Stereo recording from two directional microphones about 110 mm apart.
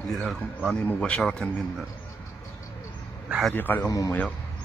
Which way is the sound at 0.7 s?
10° left (ahead or behind).